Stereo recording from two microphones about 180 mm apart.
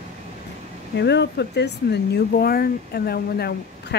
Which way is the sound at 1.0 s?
70° left (ahead or behind).